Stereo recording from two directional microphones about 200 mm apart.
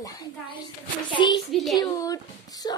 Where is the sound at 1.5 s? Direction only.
Centre (ahead or behind).